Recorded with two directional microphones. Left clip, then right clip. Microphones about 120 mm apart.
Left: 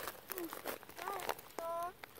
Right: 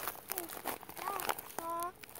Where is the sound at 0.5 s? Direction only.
65° right (ahead or behind).